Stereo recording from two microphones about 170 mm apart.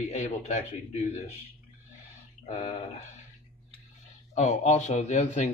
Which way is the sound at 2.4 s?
45° left (ahead or behind).